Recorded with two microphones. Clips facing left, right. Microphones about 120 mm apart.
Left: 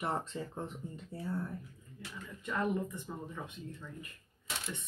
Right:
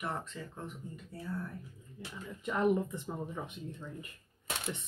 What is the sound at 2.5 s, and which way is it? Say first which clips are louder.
Speech: right 4 dB; 20° right (ahead or behind).